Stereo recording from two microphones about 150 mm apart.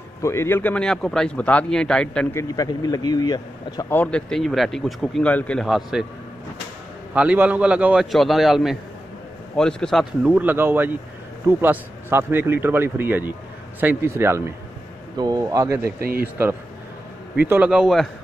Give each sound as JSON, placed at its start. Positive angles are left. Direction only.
{"t": 0.2, "sound": "a man's voice", "side_deg": 20}
{"t": 2.3, "sound": "speech", "side_deg": 25}
{"t": 3.9, "sound": "speech", "side_deg": 10}
{"t": 7.2, "sound": "speech", "side_deg": -10}
{"t": 10.2, "sound": "speech", "side_deg": -10}
{"t": 16.0, "sound": "a man's voice", "side_deg": -85}
{"t": 17.5, "sound": "speech", "side_deg": -10}